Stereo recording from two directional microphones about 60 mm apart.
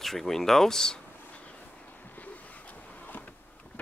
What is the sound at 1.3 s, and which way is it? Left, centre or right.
Vehicle, left.